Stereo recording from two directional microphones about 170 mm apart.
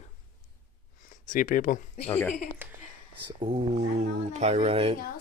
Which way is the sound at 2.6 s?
10° right (ahead or behind).